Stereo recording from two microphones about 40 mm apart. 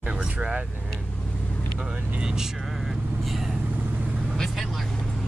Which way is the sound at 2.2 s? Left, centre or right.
Centre.